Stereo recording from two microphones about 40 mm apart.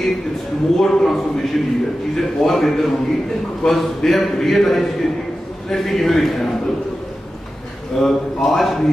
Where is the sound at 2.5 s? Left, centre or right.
Centre.